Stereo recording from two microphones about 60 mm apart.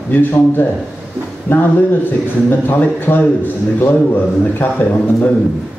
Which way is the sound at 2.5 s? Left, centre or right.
Left.